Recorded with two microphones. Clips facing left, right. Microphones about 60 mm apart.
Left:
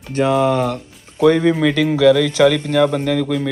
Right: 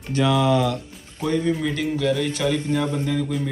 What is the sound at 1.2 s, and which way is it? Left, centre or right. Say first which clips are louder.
Speech: left 9 dB; left.